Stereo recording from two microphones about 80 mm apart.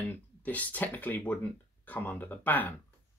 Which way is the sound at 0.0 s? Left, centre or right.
Centre.